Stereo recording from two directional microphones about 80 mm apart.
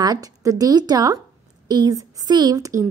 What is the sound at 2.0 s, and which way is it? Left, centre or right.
Speech, right.